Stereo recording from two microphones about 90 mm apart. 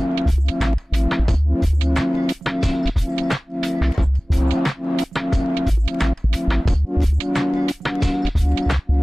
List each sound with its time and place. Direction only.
0.0 s music: centre (ahead or behind)